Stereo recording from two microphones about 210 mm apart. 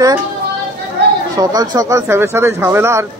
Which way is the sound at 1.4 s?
20° right (ahead or behind).